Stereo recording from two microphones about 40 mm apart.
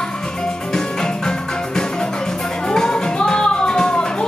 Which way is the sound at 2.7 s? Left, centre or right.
Centre.